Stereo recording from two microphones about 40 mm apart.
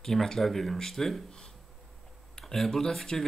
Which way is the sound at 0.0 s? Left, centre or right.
Centre.